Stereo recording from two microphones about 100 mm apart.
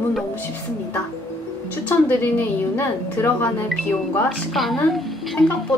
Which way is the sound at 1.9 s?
20° left (ahead or behind).